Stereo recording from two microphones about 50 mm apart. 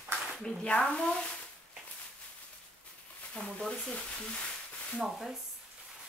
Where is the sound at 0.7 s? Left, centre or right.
Left.